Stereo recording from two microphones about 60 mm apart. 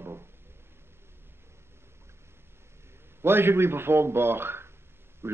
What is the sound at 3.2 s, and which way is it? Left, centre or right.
A man's voice, right.